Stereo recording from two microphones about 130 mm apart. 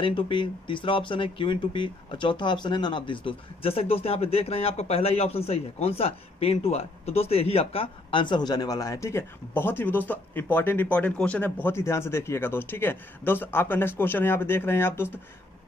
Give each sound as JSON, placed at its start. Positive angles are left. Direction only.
{"t": 0.0, "sound": "a man's voice", "side_deg": 40}